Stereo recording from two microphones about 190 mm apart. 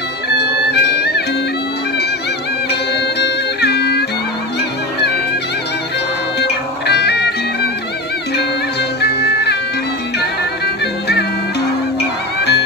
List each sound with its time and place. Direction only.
0.4 s music: 60° left (ahead or behind)
2.7 s music: 60° left (ahead or behind)
6.4 s music: 60° left (ahead or behind)
9.0 s music: 60° left (ahead or behind)